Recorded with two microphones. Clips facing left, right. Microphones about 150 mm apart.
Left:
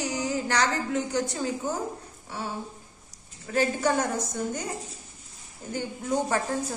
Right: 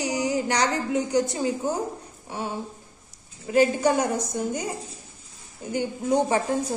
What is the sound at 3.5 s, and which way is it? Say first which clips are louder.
A woman's voice: right 5 dB; 10° right (ahead or behind).